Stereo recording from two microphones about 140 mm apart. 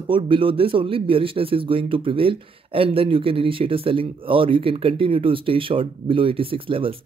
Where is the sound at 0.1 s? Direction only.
40° right (ahead or behind).